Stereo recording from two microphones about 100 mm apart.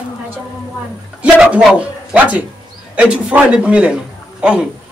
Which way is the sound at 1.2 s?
10° right (ahead or behind).